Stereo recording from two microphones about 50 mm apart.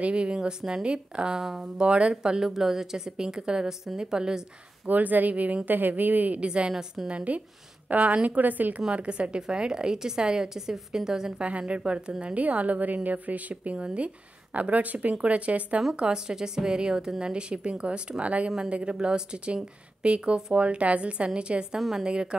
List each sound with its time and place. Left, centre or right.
0.0 s a woman's voice: right
1.4 s a woman's voice: centre
1.8 s a woman's voice: right
4.8 s a woman's voice: right
6.4 s a woman's voice: right
6.7 s a woman's voice: centre
7.1 s a woman's voice: right
8.9 s a woman's voice: right
11.4 s a woman's voice: right
21.7 s a woman's voice: centre
22.0 s a woman's voice: centre